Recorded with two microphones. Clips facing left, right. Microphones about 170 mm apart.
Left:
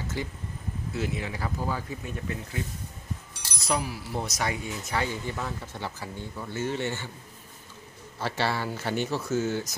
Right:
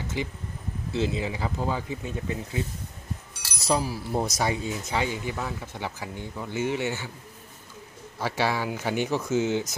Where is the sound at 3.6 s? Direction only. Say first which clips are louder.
Right 4 dB; 30° right (ahead or behind); by 7.1 s 10° right (ahead or behind).